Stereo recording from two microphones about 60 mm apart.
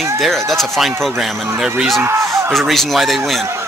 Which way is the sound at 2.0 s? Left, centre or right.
Right.